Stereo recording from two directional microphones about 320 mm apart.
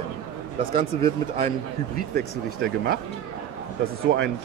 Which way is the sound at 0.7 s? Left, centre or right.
Centre.